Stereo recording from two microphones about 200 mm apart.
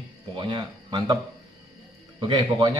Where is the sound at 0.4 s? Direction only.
20° right (ahead or behind).